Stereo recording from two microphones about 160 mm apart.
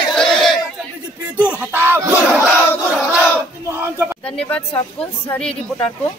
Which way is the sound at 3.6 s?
15° right (ahead or behind).